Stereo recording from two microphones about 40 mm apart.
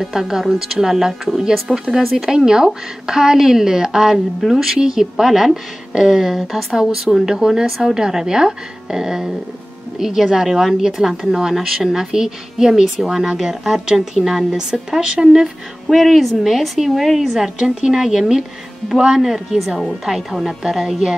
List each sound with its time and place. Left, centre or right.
0.0 s a woman's voice: centre
2.3 s speech: centre
15.9 s a woman's voice: centre
17.3 s speech: centre
19.8 s a woman's voice: centre